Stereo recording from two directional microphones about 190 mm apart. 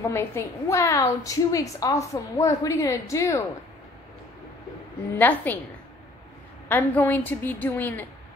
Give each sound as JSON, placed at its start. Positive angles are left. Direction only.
{"t": 0.1, "sound": "a woman's voice", "side_deg": 15}
{"t": 5.2, "sound": "a woman's voice", "side_deg": 10}
{"t": 6.7, "sound": "a woman's voice", "side_deg": 10}